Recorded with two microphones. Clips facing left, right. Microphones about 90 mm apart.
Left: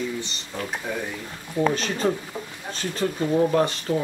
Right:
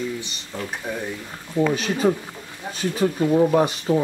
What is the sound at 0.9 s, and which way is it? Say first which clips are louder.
Speech: right 1 dB; 15° right (ahead or behind).